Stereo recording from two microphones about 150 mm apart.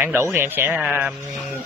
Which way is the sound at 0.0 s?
15° right (ahead or behind).